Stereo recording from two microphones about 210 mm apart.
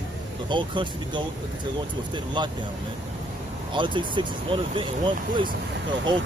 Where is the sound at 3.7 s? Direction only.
25° right (ahead or behind).